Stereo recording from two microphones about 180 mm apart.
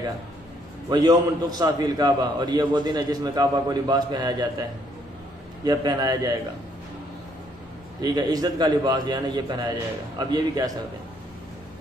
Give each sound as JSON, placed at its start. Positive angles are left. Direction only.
{"t": 0.8, "sound": "a man's voice", "side_deg": -20}
{"t": 8.0, "sound": "a man's voice", "side_deg": -20}